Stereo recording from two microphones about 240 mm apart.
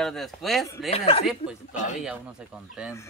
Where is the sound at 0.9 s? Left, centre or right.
Left.